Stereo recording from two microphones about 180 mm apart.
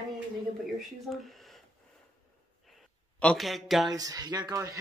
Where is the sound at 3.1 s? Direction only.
5° left (ahead or behind).